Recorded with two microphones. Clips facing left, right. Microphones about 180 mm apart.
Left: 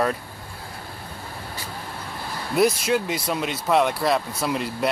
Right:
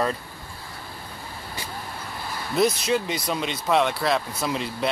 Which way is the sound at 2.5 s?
5° left (ahead or behind).